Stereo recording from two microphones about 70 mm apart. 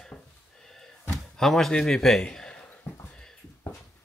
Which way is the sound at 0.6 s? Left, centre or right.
Centre.